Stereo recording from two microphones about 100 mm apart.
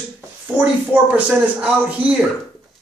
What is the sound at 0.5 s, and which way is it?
Speech, 15° right (ahead or behind).